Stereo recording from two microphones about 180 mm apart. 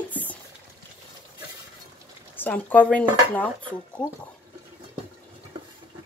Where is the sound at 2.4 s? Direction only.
10° left (ahead or behind).